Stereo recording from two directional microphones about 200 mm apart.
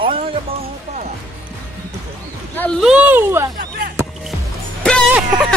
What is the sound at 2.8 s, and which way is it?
Speech, 5° right (ahead or behind).